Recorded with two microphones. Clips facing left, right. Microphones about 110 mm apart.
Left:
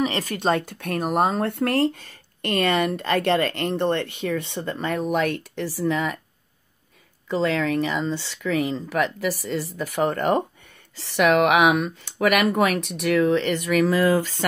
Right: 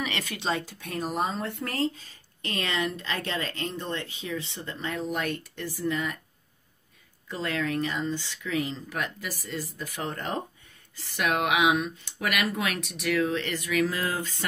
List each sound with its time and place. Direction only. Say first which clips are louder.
0.0 s speech: left 8 dB; 40° left (ahead or behind); by 6.2 s 60° left (ahead or behind)
7.2 s speech: left 8 dB; 75° left (ahead or behind)